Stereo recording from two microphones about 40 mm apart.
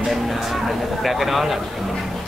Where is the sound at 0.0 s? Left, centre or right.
Centre.